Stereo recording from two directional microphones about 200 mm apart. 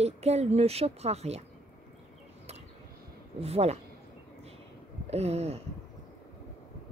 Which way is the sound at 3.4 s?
30° right (ahead or behind).